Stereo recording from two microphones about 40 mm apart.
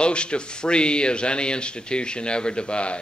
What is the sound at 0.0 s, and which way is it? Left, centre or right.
Speech, left.